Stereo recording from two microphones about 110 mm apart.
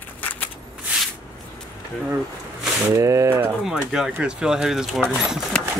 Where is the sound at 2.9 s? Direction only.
30° right (ahead or behind).